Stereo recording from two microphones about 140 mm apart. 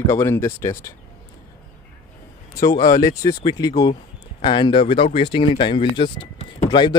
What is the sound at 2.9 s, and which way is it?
Speech, 25° left (ahead or behind).